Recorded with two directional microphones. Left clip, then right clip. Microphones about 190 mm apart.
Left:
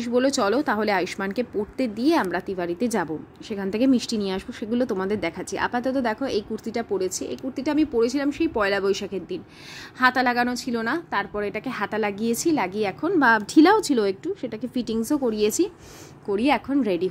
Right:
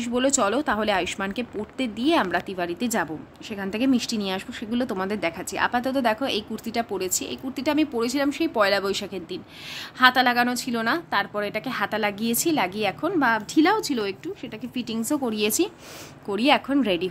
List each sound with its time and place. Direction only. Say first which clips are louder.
0.0 s speech: left 1 dB; 5° left (ahead or behind)
13.3 s a woman's voice: left 6 dB; 25° left (ahead or behind); by 17.1 s 10° left (ahead or behind)